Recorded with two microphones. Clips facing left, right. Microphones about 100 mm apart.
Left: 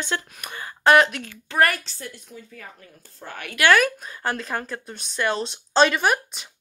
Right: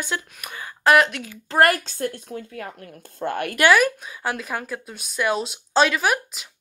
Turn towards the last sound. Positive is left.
turn(degrees=0)  # may be behind; listen again after turning